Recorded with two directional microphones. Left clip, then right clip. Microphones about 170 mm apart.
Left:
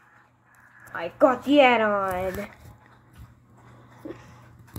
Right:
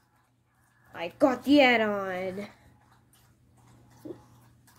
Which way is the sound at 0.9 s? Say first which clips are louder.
Left 5 dB; 25° right (ahead or behind).